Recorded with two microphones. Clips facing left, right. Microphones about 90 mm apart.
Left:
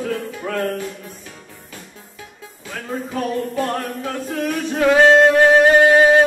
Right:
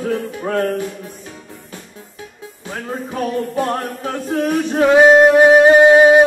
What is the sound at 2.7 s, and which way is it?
Music, 25° right (ahead or behind).